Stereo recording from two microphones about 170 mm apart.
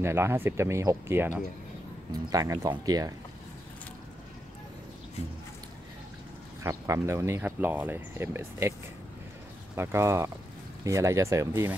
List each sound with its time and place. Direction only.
0.0 s speech: 15° right (ahead or behind)
6.6 s speech: 15° right (ahead or behind)
9.8 s speech: 15° right (ahead or behind)